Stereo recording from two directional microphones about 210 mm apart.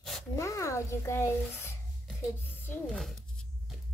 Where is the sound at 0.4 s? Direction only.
15° left (ahead or behind).